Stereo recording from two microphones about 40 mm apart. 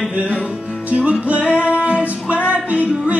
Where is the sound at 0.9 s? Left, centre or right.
Right.